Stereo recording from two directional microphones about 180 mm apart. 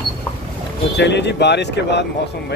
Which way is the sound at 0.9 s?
70° left (ahead or behind).